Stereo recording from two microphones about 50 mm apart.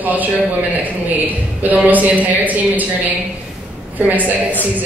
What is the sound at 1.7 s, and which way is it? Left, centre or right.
A man's voice, right.